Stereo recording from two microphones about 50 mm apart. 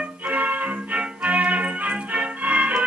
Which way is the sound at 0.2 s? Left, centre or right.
Right.